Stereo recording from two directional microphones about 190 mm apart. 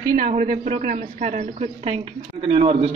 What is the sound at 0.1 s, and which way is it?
Speech, 45° right (ahead or behind).